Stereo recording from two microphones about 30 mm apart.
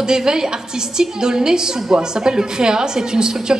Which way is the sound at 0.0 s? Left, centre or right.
Right.